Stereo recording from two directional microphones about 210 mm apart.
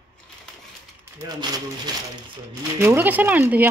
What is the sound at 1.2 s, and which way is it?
Speech, 20° right (ahead or behind).